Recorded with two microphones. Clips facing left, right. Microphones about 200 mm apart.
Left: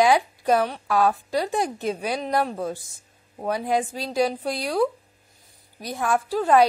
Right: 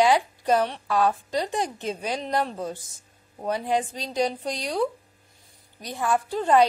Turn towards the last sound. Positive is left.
turn(degrees=10)  # may be behind; listen again after turning